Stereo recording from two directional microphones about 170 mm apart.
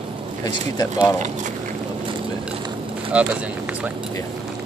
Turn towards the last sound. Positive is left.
turn(degrees=-10)  # may be behind; listen again after turning